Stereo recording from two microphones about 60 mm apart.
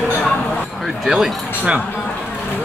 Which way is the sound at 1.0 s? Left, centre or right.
Centre.